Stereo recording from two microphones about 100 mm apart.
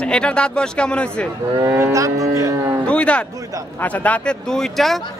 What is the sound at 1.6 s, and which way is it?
Cattle, 30° right (ahead or behind).